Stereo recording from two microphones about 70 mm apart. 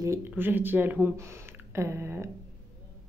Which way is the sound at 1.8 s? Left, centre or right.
Right.